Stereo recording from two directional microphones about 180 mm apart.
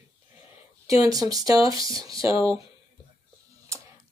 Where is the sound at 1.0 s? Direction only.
20° right (ahead or behind).